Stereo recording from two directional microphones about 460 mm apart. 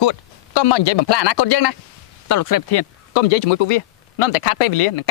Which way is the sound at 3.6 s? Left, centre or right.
Left.